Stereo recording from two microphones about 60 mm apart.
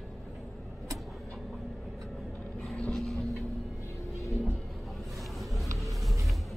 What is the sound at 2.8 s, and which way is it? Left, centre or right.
Vehicle, centre.